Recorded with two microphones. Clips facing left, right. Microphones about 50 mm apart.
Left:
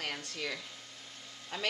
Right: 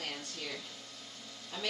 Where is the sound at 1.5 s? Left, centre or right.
Left.